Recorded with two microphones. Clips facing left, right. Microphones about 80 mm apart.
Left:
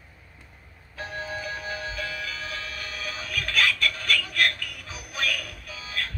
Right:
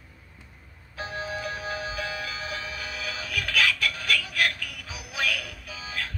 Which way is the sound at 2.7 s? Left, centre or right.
Left.